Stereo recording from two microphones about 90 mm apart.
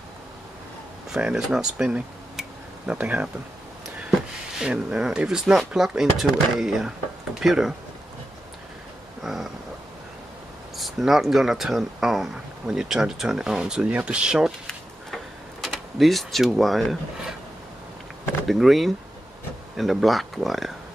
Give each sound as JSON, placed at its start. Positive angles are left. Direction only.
{"t": 1.1, "sound": "speech", "side_deg": -5}
{"t": 4.6, "sound": "speech", "side_deg": -5}
{"t": 9.2, "sound": "speech", "side_deg": -5}
{"t": 10.8, "sound": "speech", "side_deg": 0}
{"t": 15.6, "sound": "speech", "side_deg": 0}
{"t": 18.5, "sound": "speech", "side_deg": 0}